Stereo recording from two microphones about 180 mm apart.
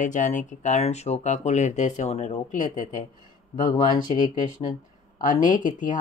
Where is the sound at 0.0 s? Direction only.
45° left (ahead or behind).